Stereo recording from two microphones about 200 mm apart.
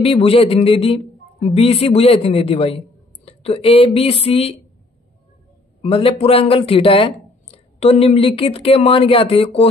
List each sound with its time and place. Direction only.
0.0 s speech: 30° left (ahead or behind)
5.8 s speech: 30° left (ahead or behind)